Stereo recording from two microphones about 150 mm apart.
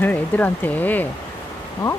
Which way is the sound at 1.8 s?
30° left (ahead or behind).